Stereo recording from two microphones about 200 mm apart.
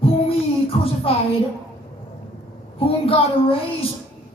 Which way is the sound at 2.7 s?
30° left (ahead or behind).